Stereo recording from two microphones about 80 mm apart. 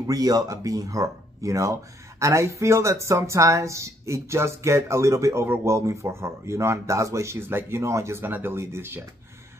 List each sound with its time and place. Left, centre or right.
0.0 s speech: right